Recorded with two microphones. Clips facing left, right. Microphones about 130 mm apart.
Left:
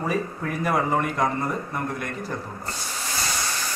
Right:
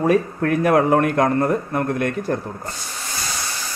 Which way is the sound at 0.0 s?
70° right (ahead or behind).